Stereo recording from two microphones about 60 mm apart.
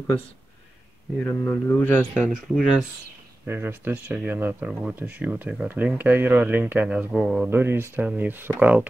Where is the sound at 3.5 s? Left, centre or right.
Right.